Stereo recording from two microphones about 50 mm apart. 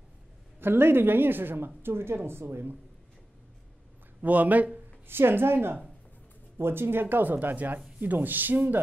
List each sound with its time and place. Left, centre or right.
0.6 s a woman's voice: right
4.2 s speech: right
5.0 s a woman's voice: right